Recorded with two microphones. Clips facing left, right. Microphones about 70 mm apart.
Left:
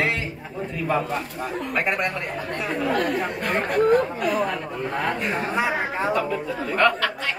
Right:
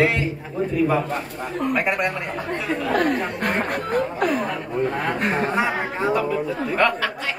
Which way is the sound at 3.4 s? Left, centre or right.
Right.